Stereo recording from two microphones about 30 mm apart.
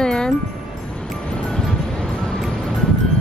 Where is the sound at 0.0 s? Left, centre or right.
Left.